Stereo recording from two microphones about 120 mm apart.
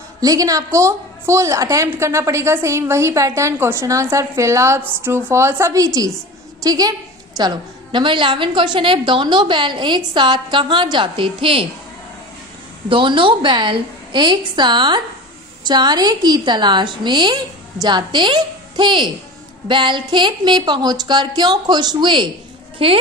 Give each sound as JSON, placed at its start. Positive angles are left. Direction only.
{"t": 0.2, "sound": "a woman's voice", "side_deg": -30}
{"t": 12.9, "sound": "a woman's voice", "side_deg": -45}
{"t": 22.8, "sound": "speech", "side_deg": -50}